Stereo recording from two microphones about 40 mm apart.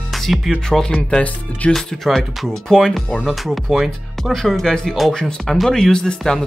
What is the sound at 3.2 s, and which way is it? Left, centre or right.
Speech, centre.